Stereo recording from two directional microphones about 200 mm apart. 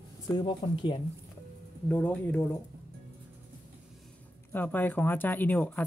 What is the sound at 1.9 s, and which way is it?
Speech, 10° left (ahead or behind).